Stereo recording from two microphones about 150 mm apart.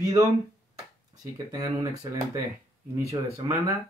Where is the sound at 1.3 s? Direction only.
25° right (ahead or behind).